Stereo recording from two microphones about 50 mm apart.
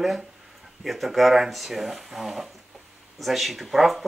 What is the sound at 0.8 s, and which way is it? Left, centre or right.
Speech, centre.